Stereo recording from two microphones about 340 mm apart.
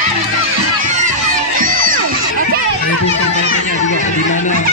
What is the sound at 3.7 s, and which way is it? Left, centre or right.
Music, left.